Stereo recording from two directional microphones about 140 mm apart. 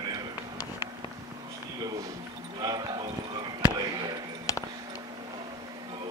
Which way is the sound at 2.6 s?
30° right (ahead or behind).